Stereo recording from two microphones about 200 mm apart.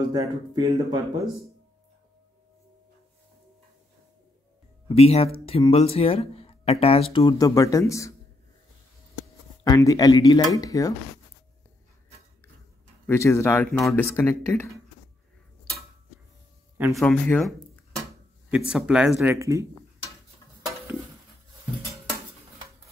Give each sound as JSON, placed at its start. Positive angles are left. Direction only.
{"t": 0.1, "sound": "speech", "side_deg": -15}
{"t": 4.8, "sound": "speech", "side_deg": 30}
{"t": 9.7, "sound": "speech", "side_deg": 15}
{"t": 13.0, "sound": "speech", "side_deg": 10}
{"t": 16.9, "sound": "speech", "side_deg": 5}